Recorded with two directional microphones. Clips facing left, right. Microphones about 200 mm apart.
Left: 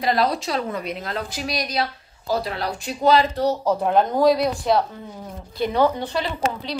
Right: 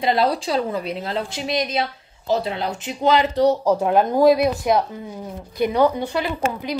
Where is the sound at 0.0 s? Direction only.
25° right (ahead or behind).